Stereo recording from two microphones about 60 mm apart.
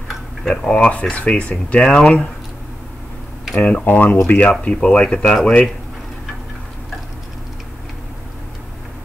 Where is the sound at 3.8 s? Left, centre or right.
Left.